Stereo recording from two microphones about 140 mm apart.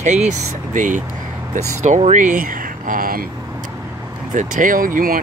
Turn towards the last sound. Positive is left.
turn(degrees=-80)